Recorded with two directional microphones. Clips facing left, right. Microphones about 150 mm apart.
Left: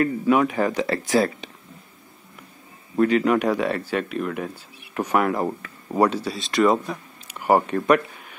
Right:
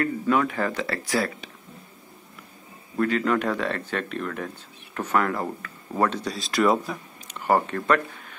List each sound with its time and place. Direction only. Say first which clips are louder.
0.0 s speech: left 4 dB; 15° left (ahead or behind)
3.0 s speech: left 4 dB; 20° left (ahead or behind)
6.0 s speech: left 3 dB; 5° left (ahead or behind)
7.3 s speech: left 3 dB; 15° left (ahead or behind)